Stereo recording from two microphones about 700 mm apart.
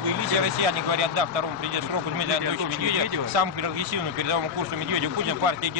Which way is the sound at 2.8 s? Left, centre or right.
Right.